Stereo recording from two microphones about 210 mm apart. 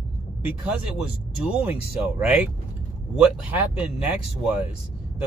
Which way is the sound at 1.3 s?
5° right (ahead or behind).